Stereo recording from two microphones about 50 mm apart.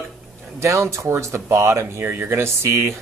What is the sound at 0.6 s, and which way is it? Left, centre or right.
Speech, right.